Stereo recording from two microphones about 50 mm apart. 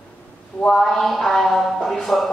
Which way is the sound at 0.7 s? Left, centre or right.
Centre.